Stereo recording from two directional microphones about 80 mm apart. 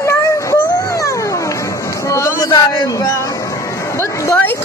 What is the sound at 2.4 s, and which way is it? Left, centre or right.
Speech, left.